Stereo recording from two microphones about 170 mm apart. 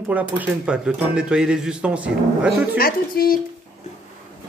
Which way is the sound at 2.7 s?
60° left (ahead or behind).